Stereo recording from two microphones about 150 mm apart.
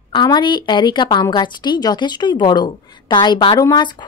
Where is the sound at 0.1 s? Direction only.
30° left (ahead or behind).